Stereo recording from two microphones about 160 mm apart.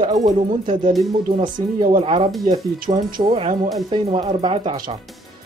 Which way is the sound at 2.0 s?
35° right (ahead or behind).